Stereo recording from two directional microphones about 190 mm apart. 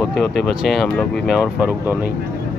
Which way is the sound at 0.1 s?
60° left (ahead or behind).